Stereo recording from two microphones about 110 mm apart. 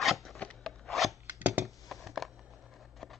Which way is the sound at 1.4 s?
15° right (ahead or behind).